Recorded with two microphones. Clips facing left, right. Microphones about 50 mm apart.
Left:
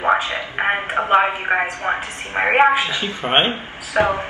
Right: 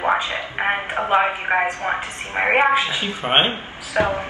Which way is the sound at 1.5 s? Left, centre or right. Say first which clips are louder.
Left 1 dB; centre.